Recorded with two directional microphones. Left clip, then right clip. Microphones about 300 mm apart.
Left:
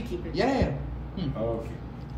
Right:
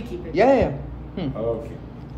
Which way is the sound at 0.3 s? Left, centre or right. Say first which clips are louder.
Right 10 dB; centre.